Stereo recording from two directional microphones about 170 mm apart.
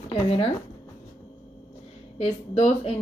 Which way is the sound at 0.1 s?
35° left (ahead or behind).